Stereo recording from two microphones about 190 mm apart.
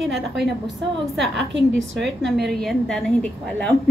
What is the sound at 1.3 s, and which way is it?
Speech, 65° right (ahead or behind).